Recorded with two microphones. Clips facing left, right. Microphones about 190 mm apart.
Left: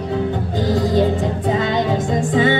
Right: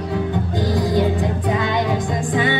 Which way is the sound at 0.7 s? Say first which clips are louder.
Left 3 dB; 25° left (ahead or behind).